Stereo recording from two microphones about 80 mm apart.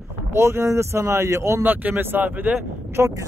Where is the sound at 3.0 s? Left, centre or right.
Right.